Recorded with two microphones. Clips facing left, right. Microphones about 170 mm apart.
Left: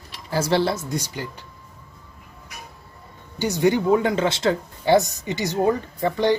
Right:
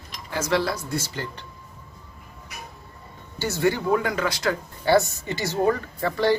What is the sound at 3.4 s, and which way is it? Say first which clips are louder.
Speech: left 4 dB; 15° left (ahead or behind).